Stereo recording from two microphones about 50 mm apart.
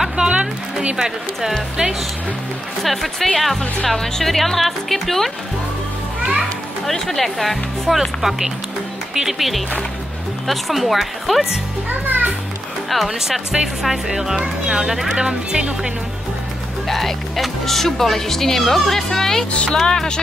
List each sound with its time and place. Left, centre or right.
0.2 s speech: right; by 5.3 s centre
6.9 s speech: centre
11.9 s music: right
12.9 s speech: centre
16.8 s a woman's voice: centre
19.5 s a woman's voice: left